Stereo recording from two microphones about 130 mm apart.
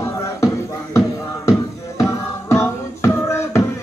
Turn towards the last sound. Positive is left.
turn(degrees=20)  # may be behind; listen again after turning